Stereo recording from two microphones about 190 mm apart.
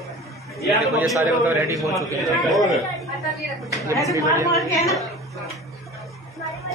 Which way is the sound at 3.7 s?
15° right (ahead or behind).